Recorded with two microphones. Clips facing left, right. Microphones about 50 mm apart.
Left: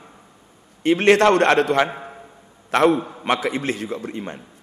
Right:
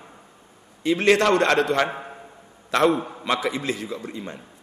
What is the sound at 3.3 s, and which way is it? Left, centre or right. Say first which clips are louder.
A man's voice: left 3 dB; left.